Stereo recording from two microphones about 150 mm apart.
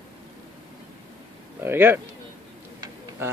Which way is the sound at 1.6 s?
15° right (ahead or behind).